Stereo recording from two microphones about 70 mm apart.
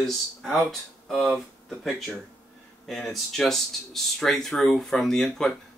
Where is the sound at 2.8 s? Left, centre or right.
Centre.